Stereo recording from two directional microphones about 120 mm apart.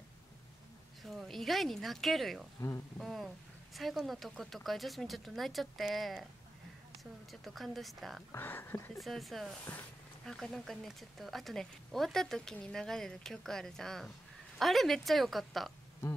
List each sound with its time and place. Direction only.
1.0 s a woman's voice: centre (ahead or behind)
7.2 s a woman's voice: centre (ahead or behind)
8.3 s speech: 20° left (ahead or behind)
8.9 s a woman's voice: centre (ahead or behind)